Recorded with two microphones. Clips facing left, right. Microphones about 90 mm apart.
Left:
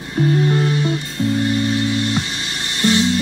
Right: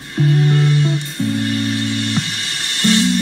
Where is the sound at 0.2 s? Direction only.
20° left (ahead or behind).